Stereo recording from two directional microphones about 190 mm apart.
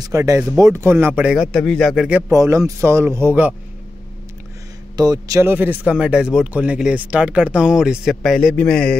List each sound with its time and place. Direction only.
0.0 s speech: 15° right (ahead or behind)
4.9 s speech: 20° right (ahead or behind); by 8.9 s 5° left (ahead or behind)